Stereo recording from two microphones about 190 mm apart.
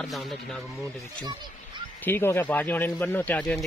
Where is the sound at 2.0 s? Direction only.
10° left (ahead or behind).